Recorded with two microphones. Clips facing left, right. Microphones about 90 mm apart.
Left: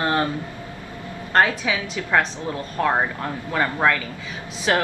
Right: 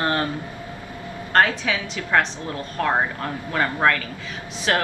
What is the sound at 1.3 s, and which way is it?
Speech, 20° left (ahead or behind).